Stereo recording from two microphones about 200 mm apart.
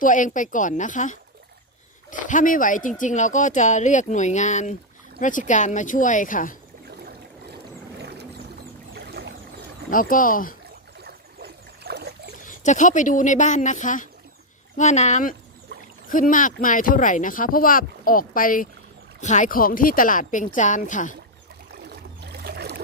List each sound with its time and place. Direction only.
0.0 s speech: 40° left (ahead or behind)
7.1 s boat: 55° right (ahead or behind)
9.8 s speech: 45° left (ahead or behind)
11.1 s boat: 55° right (ahead or behind)
12.4 s speech: 40° left (ahead or behind)
21.8 s boat: 55° right (ahead or behind)